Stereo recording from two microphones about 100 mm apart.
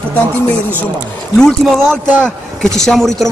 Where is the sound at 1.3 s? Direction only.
5° left (ahead or behind).